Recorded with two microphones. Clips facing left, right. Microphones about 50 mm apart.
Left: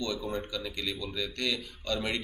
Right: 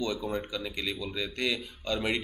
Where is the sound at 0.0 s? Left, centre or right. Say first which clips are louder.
Right 2 dB; centre.